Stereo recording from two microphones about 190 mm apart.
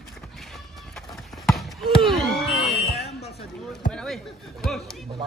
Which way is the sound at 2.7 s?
35° left (ahead or behind).